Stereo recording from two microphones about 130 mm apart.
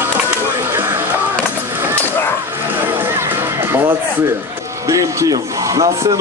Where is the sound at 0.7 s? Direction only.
20° right (ahead or behind).